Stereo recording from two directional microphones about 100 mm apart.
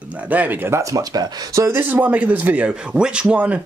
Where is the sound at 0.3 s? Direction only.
15° right (ahead or behind); by 1.8 s 35° right (ahead or behind).